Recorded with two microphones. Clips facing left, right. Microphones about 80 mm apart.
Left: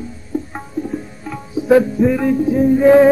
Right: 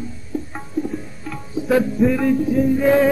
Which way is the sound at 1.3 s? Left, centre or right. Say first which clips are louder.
Left 6 dB; centre.